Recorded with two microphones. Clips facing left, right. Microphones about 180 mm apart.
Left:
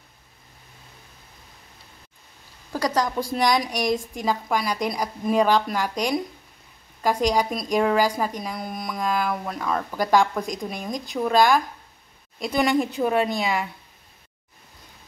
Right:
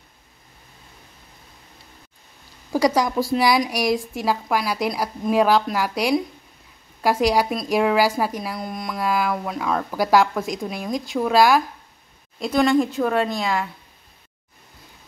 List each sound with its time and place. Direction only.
2.7 s a woman's voice: 10° right (ahead or behind)